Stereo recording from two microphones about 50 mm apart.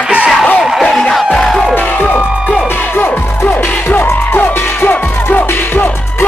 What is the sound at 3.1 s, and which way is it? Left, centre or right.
Music, left.